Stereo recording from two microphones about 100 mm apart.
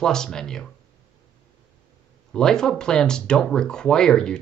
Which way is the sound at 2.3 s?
5° left (ahead or behind).